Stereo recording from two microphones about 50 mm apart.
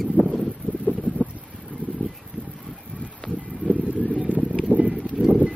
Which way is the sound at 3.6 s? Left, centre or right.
Right.